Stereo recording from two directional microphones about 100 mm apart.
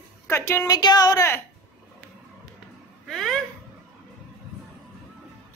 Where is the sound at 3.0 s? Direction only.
Centre (ahead or behind).